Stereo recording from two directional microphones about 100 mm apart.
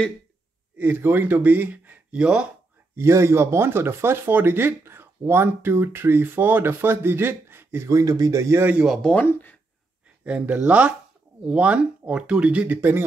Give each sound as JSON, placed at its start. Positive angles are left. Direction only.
{"t": 0.7, "sound": "speech", "side_deg": -20}
{"t": 3.0, "sound": "speech", "side_deg": -25}
{"t": 8.8, "sound": "speech", "side_deg": 0}
{"t": 9.1, "sound": "speech", "side_deg": 15}
{"t": 10.2, "sound": "speech", "side_deg": -15}